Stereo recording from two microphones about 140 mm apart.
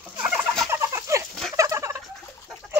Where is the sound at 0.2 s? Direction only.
5° right (ahead or behind).